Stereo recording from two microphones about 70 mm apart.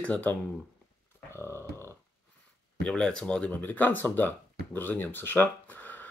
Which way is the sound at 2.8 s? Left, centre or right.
Centre.